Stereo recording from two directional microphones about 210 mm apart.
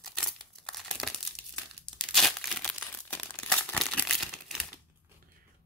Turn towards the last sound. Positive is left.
turn(degrees=0)  # may be behind; listen again after turning